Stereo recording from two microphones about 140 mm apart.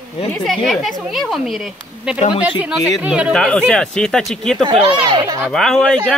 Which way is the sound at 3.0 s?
10° right (ahead or behind).